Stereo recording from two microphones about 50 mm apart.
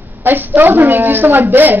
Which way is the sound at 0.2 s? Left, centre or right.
Right.